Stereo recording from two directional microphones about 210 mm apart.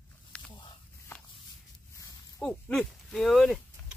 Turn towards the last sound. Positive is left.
turn(degrees=0)  # may be behind; listen again after turning